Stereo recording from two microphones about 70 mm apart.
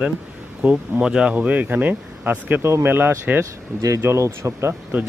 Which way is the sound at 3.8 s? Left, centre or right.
Right.